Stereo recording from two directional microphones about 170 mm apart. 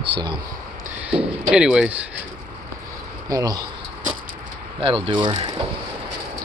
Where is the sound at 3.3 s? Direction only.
20° right (ahead or behind).